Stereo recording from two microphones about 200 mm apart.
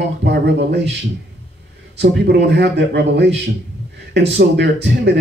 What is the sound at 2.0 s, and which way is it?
Speech, 55° right (ahead or behind).